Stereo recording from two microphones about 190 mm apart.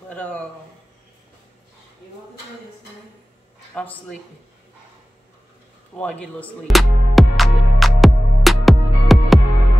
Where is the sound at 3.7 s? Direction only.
5° left (ahead or behind).